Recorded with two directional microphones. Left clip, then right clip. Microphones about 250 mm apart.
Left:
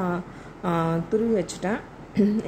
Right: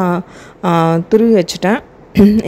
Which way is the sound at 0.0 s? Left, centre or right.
Right.